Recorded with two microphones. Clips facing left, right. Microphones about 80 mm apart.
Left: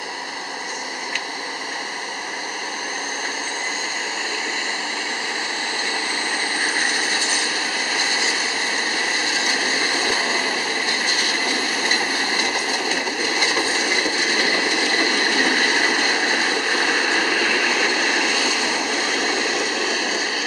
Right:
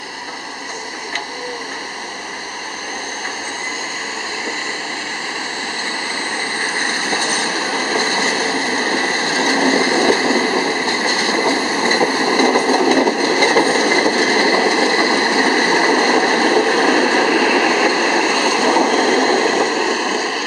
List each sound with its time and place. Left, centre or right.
7.9 s vehicle: right
16.1 s vehicle: right
17.6 s train: right
18.1 s vehicle: right
19.9 s a sound: centre